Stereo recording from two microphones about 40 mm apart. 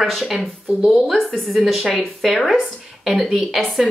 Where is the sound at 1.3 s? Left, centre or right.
Centre.